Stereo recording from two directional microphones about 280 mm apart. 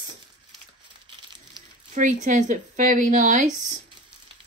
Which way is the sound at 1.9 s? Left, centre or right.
Right.